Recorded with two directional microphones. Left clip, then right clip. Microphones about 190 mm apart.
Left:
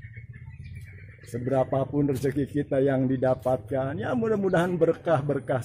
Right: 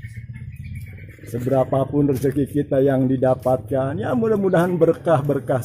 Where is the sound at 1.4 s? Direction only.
5° left (ahead or behind).